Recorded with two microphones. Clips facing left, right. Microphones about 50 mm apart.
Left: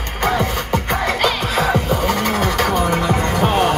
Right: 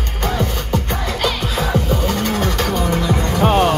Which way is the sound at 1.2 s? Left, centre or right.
Left.